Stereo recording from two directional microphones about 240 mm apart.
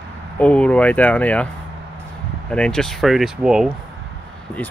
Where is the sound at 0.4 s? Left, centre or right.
Centre.